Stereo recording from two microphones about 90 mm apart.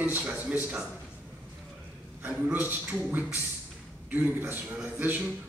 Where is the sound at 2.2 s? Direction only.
15° right (ahead or behind).